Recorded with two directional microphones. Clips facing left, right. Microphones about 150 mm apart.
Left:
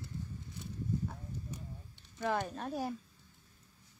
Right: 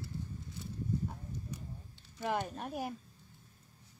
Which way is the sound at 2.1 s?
10° right (ahead or behind).